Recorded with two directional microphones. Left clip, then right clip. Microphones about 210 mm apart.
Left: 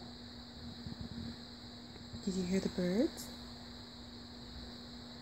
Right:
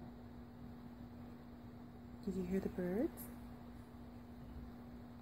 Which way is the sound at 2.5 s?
35° left (ahead or behind).